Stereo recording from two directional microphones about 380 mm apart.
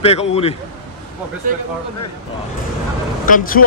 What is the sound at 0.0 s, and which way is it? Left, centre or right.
Speech, centre.